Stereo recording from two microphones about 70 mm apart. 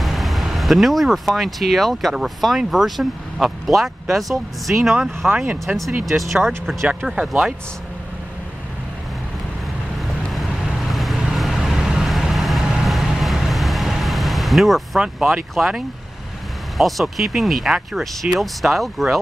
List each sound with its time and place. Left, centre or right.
0.0 s speech: centre
5.2 s speech: centre
6.0 s speech: centre
10.9 s vehicle: centre
15.0 s speech: centre
15.5 s speech: centre